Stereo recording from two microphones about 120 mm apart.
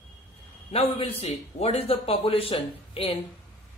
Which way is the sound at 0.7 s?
55° left (ahead or behind).